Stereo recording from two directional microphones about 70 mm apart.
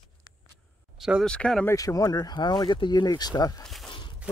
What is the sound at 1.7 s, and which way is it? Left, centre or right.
Speech, left.